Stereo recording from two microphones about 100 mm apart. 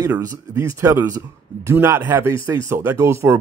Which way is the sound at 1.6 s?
25° right (ahead or behind).